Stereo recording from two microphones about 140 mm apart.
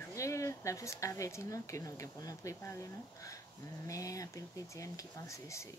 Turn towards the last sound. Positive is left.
turn(degrees=20)  # may be behind; listen again after turning